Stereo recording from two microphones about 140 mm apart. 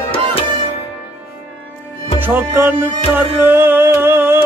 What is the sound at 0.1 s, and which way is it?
Music, 40° left (ahead or behind).